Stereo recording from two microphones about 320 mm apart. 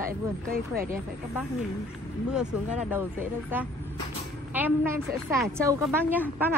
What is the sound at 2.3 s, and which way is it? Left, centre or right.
Speech, centre.